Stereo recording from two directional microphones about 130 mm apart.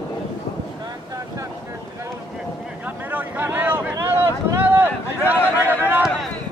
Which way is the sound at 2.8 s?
15° right (ahead or behind).